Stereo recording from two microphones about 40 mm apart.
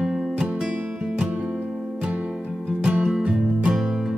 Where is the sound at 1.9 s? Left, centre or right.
Right.